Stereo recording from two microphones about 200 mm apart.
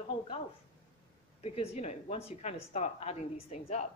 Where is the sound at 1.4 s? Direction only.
30° left (ahead or behind).